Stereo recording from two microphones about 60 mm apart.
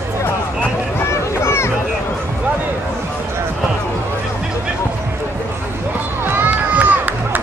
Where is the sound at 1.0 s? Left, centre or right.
Left.